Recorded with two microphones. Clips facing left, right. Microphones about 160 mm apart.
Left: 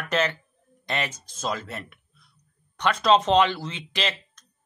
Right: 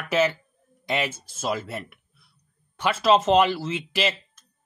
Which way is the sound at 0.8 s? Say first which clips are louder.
Right 3 dB; 10° right (ahead or behind).